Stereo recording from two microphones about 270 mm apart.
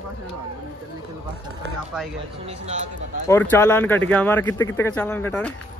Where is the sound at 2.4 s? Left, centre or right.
Right.